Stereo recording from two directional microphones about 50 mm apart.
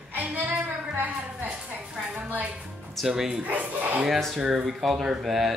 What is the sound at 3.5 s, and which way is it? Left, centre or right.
Speech, right.